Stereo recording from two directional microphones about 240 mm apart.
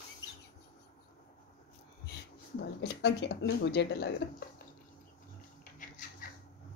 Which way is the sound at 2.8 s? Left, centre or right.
Left.